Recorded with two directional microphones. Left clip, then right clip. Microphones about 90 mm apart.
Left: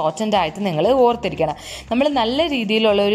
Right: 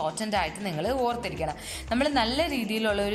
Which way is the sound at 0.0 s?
30° left (ahead or behind).